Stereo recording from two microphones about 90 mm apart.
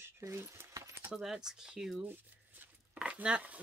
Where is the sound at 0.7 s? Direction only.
35° right (ahead or behind).